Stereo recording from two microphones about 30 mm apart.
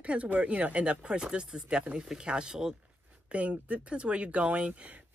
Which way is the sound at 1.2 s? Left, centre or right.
Right.